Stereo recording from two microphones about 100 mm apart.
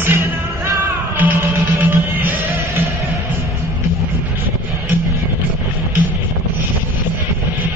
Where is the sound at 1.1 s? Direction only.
15° right (ahead or behind).